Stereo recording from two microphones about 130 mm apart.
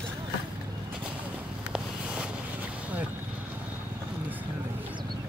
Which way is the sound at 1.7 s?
5° right (ahead or behind).